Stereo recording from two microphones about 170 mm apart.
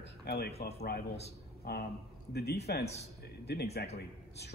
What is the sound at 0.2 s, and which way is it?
A man's voice, 75° left (ahead or behind).